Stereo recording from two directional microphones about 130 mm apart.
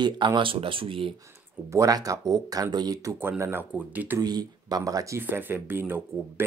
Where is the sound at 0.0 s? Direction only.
35° right (ahead or behind).